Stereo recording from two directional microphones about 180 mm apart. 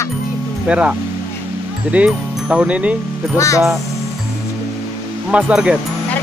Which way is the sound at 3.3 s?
15° left (ahead or behind).